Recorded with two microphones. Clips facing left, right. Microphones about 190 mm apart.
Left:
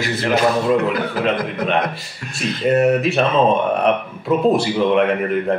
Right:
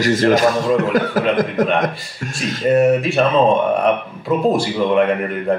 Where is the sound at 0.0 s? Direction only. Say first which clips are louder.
Right 4 dB; 45° right (ahead or behind).